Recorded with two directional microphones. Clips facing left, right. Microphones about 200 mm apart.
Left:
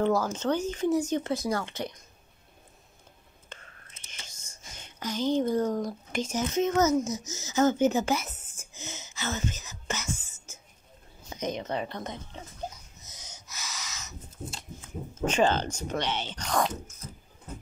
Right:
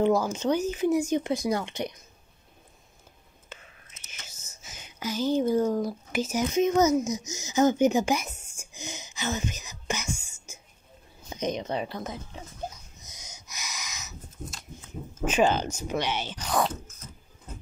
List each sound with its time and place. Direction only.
0.0 s speech: 15° right (ahead or behind)
3.4 s whispering: 10° right (ahead or behind)
4.1 s speech: 5° right (ahead or behind)
13.0 s wheeze: 15° right (ahead or behind)
15.2 s speech: 10° right (ahead or behind)